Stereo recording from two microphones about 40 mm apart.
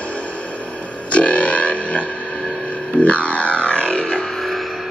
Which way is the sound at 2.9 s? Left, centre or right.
Left.